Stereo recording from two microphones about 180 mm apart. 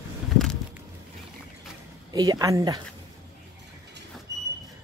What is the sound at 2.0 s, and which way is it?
Speech, 20° right (ahead or behind).